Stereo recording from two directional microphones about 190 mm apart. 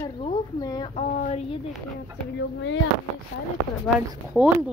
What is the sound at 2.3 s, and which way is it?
Speech, 70° left (ahead or behind).